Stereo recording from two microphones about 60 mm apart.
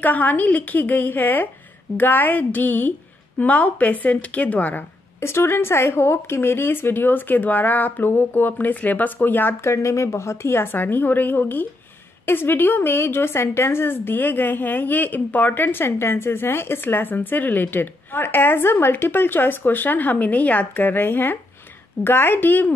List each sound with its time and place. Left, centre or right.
0.0 s speech: left
5.2 s a woman's voice: left
9.7 s a woman's voice: left